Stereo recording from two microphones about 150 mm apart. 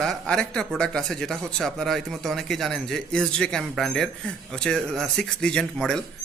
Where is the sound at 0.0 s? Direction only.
5° left (ahead or behind).